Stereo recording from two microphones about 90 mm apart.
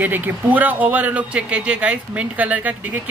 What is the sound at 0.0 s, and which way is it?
Speech, 20° right (ahead or behind).